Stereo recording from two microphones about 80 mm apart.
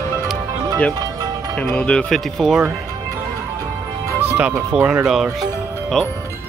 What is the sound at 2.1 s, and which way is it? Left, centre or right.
Speech, centre.